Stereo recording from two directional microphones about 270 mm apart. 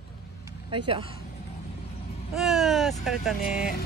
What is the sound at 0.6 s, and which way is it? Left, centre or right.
Speech, centre.